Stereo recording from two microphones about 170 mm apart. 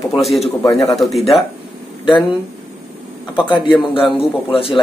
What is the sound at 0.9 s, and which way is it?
Speech, centre (ahead or behind).